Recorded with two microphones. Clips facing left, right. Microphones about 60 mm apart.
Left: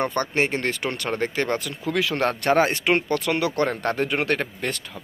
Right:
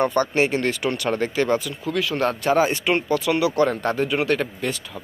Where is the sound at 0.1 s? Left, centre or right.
Left.